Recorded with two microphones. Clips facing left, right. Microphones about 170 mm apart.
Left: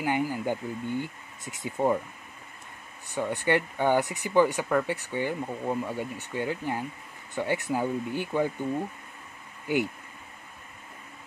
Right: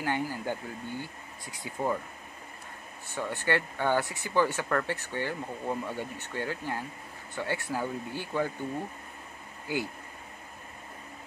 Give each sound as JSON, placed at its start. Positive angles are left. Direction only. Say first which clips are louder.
{"t": 0.0, "sound": "speech", "louder": "left 4 dB", "side_deg": 15}
{"t": 3.1, "sound": "speech", "louder": "left 4 dB", "side_deg": 15}